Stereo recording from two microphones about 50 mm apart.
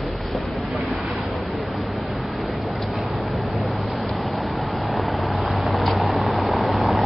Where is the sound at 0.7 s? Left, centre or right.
Right.